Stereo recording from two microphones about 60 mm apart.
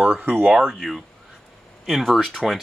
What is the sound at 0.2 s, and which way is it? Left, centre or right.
Speech, right.